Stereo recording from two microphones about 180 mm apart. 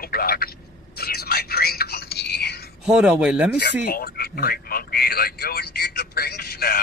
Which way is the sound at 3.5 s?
60° left (ahead or behind).